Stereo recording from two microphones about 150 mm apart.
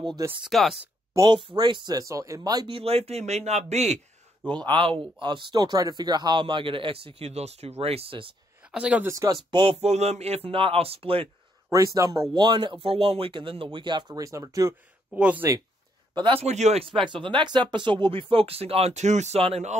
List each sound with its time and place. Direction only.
0.4 s speech: centre (ahead or behind)
1.1 s speech: 25° right (ahead or behind)
2.7 s speech: 40° right (ahead or behind)
4.6 s speech: 35° right (ahead or behind)
8.7 s speech: 10° right (ahead or behind)
9.1 s speech: 20° right (ahead or behind)
9.5 s speech: 30° right (ahead or behind)
9.8 s speech: 45° right (ahead or behind)
11.7 s speech: 20° right (ahead or behind)
15.1 s speech: 10° right (ahead or behind)
16.2 s speech: 35° right (ahead or behind)
16.4 s speech: 50° right (ahead or behind)
16.9 s speech: 35° right (ahead or behind)